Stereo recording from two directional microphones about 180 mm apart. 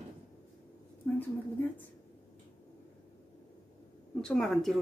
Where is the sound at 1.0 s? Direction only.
15° left (ahead or behind).